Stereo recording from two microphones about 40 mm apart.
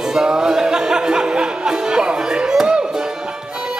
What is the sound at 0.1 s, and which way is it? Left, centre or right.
Music, centre.